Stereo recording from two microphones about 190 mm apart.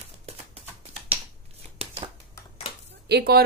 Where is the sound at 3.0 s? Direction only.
60° right (ahead or behind).